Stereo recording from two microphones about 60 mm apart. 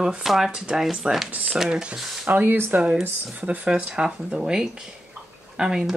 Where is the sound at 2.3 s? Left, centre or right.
Right.